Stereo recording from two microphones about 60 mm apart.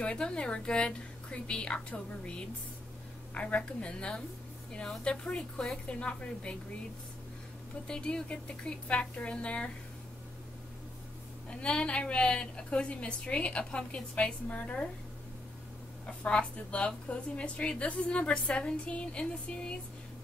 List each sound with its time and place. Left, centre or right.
0.0 s a woman's voice: centre
7.8 s a woman's voice: centre
11.6 s a woman's voice: centre
16.1 s a woman's voice: centre